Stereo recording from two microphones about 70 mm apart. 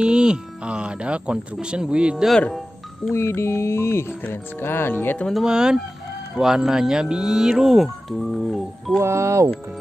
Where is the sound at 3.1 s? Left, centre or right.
Left.